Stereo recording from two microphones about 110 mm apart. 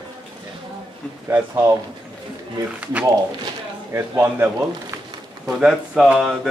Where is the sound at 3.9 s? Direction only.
20° right (ahead or behind).